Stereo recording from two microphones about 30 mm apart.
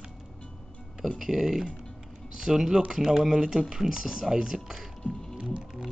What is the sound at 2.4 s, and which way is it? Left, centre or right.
Speech, centre.